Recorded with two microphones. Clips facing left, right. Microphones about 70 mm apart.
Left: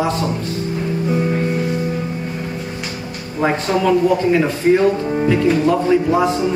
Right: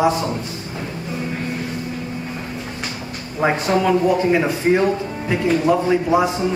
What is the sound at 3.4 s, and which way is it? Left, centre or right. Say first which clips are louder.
Speech: even; centre.